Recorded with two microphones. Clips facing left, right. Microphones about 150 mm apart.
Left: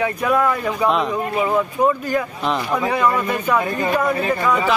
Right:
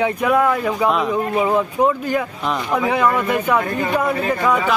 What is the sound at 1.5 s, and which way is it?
Speech, 15° right (ahead or behind).